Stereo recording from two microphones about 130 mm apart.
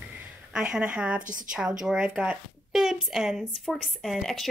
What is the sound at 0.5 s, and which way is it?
A woman's voice, 5° right (ahead or behind).